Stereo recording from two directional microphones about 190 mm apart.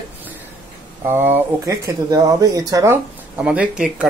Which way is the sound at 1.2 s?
15° right (ahead or behind).